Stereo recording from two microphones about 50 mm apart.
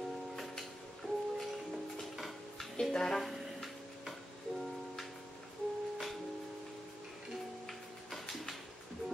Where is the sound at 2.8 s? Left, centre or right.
Centre.